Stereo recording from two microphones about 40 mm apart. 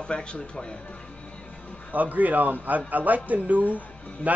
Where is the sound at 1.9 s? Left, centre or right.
Right.